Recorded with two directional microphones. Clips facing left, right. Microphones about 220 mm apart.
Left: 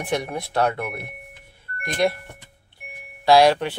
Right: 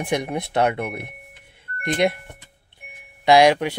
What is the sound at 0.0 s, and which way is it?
Speech, 15° right (ahead or behind).